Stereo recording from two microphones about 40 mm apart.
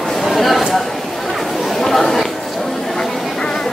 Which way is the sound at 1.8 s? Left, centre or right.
Centre.